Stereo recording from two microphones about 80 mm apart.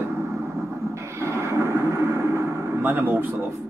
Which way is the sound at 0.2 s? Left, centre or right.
Right.